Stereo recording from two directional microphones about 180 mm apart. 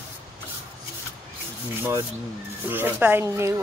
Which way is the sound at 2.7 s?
10° right (ahead or behind).